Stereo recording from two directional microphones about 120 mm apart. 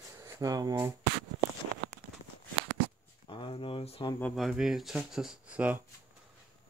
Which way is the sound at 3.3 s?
50° left (ahead or behind).